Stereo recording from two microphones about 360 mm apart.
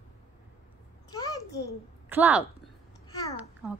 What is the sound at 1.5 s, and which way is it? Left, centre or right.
Speech, left.